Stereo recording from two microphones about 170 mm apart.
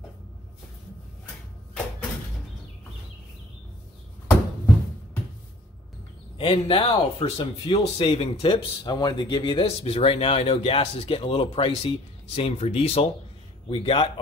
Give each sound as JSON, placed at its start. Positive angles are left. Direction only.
{"t": 6.3, "sound": "speech", "side_deg": 30}